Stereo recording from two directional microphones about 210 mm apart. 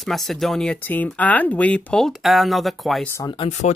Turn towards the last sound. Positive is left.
turn(degrees=30)  # may be behind; listen again after turning